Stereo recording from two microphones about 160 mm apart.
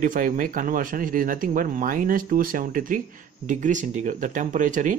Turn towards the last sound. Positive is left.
turn(degrees=-55)  # may be behind; listen again after turning